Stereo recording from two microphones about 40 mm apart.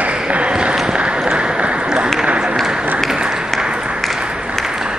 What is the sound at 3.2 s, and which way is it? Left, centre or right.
Applause, centre.